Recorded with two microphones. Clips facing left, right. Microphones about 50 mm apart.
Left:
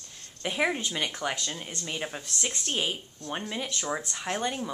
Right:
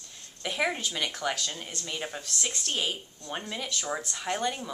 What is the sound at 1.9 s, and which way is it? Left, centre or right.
Speech, centre.